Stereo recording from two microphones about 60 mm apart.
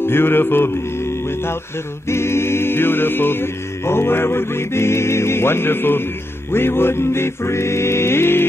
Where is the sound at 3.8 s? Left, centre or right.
Left.